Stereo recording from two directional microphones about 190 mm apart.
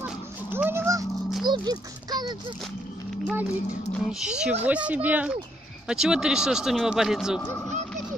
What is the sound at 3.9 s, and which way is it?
A child's voice, 5° right (ahead or behind).